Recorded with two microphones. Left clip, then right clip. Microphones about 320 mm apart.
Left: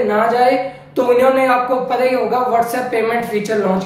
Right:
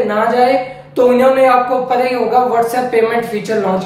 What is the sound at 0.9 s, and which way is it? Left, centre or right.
Speech, centre.